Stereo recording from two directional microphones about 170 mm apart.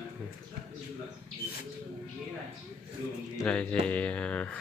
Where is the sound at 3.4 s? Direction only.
5° left (ahead or behind).